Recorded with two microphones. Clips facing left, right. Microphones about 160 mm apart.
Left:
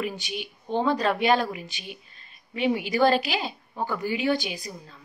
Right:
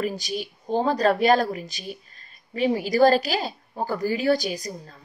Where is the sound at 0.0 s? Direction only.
40° right (ahead or behind).